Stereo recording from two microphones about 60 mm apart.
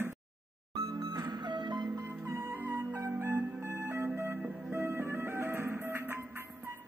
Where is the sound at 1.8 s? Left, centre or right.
Right.